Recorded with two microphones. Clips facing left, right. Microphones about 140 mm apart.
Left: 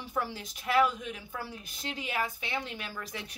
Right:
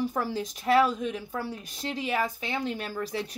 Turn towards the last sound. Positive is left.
turn(degrees=-35)  # may be behind; listen again after turning